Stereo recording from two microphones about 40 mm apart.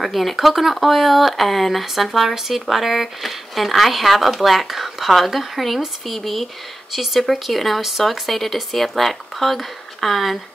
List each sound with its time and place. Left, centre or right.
0.0 s speech: centre